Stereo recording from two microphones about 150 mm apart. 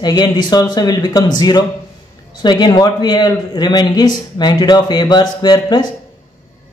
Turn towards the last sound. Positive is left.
turn(degrees=30)  # may be behind; listen again after turning